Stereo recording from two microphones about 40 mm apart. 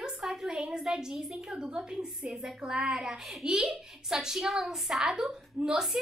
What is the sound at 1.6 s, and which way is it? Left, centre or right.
A woman's voice, centre.